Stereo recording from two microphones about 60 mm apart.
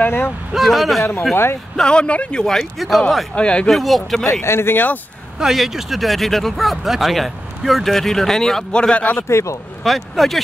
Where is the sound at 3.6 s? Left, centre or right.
Centre.